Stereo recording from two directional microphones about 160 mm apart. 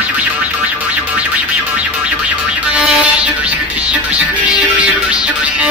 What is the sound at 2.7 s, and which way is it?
Music, 5° right (ahead or behind).